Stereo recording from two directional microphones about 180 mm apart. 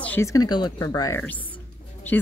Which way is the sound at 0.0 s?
10° left (ahead or behind).